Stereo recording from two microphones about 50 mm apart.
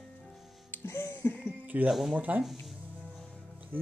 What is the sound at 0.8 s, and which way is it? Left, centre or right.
Music, left.